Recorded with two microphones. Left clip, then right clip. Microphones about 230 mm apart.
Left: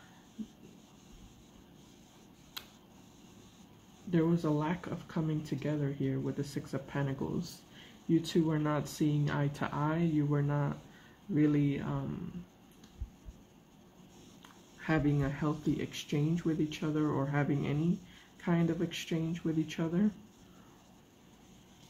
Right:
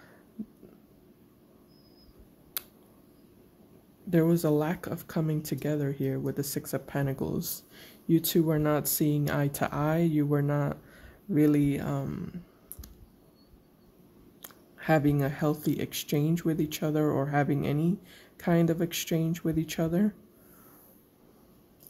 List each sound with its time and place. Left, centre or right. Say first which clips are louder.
2.6 s finger snapping: right 3 dB; right
4.1 s speech: right 6 dB; right
14.4 s speech: right 7 dB; right